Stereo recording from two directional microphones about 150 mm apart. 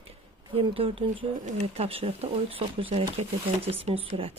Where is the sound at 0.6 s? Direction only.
40° right (ahead or behind).